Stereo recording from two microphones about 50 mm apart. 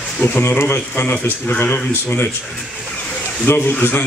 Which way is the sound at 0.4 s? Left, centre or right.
Left.